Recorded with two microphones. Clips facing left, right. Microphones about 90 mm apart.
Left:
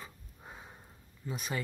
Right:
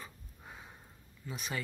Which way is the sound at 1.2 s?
35° left (ahead or behind).